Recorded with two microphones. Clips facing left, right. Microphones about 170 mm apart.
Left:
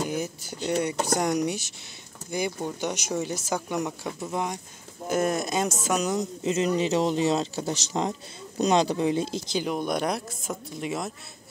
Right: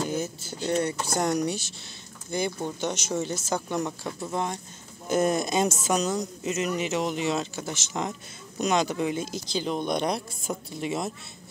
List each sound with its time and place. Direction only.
0.0 s speech: 15° left (ahead or behind)
5.3 s speech: 5° left (ahead or behind)
6.0 s speech: 25° left (ahead or behind)
9.6 s speech: 10° left (ahead or behind)